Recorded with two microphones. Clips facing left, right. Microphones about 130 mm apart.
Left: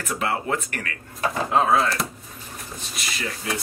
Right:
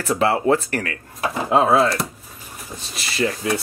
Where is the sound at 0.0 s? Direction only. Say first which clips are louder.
Right 8 dB; 35° right (ahead or behind).